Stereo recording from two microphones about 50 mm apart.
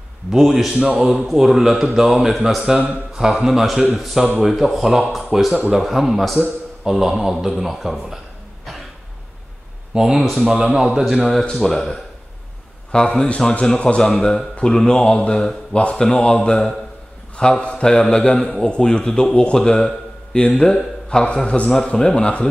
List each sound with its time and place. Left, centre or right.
0.3 s speech: centre
0.7 s speech: centre
1.1 s speech: centre
2.6 s speech: centre
3.3 s speech: centre
9.9 s speech: centre
11.6 s mantra: centre
13.7 s a man's voice: left
14.0 s mantra: centre
22.2 s a man's voice: left